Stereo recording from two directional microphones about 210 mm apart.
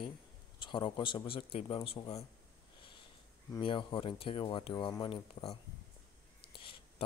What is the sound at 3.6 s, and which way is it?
Speech, 25° left (ahead or behind).